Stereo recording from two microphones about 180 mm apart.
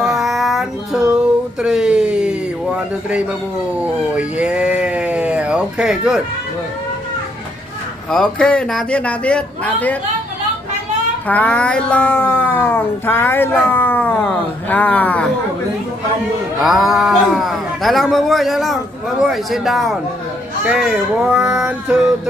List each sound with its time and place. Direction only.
0.0 s child singing: centre (ahead or behind)
1.6 s a sound: 5° right (ahead or behind)
4.1 s speech: 5° right (ahead or behind)
8.1 s speech: 5° left (ahead or behind)
11.2 s speech: 10° left (ahead or behind)
16.5 s speech: centre (ahead or behind)